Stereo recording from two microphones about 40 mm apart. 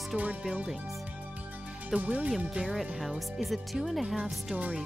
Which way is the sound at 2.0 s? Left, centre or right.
Right.